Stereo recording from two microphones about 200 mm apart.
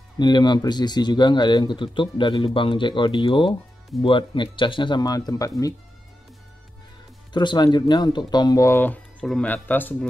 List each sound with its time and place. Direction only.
0.2 s speech: 20° left (ahead or behind)
7.3 s speech: 20° left (ahead or behind)